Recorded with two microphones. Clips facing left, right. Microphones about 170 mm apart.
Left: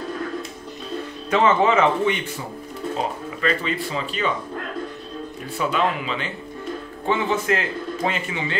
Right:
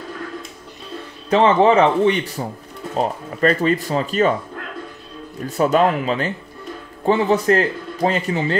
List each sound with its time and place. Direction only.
1.3 s a man's voice: 35° right (ahead or behind)
5.6 s a man's voice: 40° right (ahead or behind)